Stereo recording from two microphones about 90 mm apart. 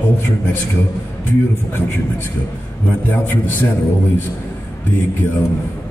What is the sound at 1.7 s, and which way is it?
A man's voice, 25° left (ahead or behind).